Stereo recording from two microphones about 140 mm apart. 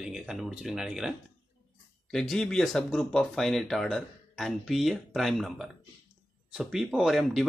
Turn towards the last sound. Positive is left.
turn(degrees=0)  # may be behind; listen again after turning